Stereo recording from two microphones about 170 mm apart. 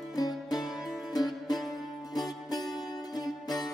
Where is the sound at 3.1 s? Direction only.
25° left (ahead or behind).